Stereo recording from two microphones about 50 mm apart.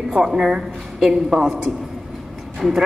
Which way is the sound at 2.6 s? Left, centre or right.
Centre.